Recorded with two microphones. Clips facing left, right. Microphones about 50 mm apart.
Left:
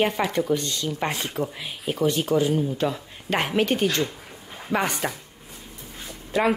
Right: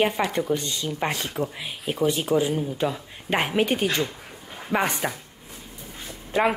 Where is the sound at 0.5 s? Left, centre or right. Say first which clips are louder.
Left 1 dB; centre.